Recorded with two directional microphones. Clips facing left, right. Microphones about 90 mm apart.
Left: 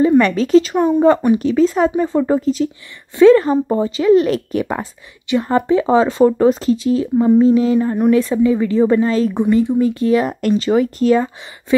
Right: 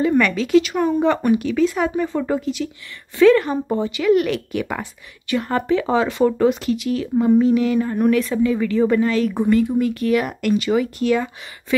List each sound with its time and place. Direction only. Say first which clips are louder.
0.2 s speech: left 4 dB; 35° left (ahead or behind)